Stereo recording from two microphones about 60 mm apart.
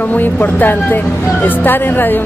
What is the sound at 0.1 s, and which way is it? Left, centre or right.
Speech, left.